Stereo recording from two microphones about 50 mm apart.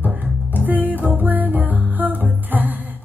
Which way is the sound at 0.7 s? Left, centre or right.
Right.